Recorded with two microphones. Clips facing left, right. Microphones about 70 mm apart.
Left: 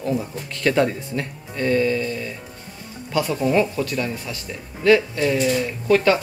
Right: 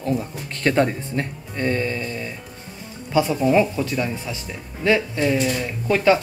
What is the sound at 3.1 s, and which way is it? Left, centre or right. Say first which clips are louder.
Speech: right 2 dB; centre.